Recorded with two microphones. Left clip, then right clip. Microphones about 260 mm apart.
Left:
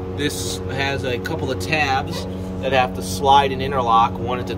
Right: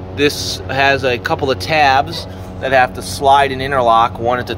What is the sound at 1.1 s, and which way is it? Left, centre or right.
Speech, centre.